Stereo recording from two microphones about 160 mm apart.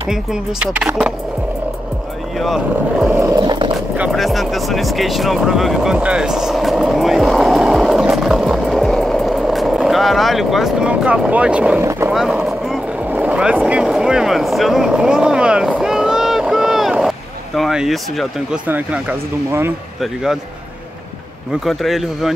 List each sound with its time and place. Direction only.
0.1 s speech: 5° right (ahead or behind)
2.3 s speech: centre (ahead or behind)
3.1 s roaring cats: 20° right (ahead or behind)
3.7 s speech: 5° right (ahead or behind)
11.8 s speech: 20° right (ahead or behind)
12.1 s boat: 5° right (ahead or behind)
17.6 s speech: centre (ahead or behind)
21.6 s speech: centre (ahead or behind)